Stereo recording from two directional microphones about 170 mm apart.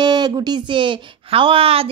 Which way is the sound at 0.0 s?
25° right (ahead or behind).